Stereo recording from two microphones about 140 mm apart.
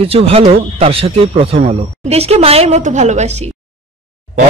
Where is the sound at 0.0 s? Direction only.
45° right (ahead or behind).